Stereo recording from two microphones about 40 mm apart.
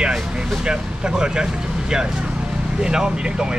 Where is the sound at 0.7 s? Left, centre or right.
Right.